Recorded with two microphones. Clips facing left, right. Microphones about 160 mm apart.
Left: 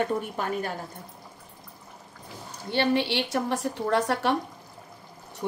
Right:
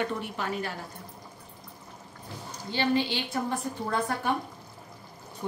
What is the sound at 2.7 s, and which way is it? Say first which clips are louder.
A woman's voice: left 3 dB; 65° left (ahead or behind).